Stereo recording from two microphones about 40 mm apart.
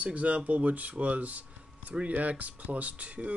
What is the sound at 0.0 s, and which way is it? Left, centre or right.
Speech, right.